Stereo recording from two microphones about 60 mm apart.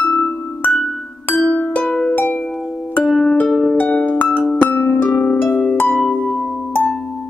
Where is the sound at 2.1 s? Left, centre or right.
Left.